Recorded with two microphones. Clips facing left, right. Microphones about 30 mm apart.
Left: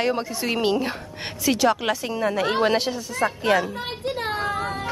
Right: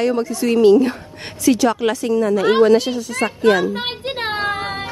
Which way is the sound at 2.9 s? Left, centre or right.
Right.